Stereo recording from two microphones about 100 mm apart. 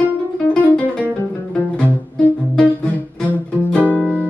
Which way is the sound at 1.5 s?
10° left (ahead or behind).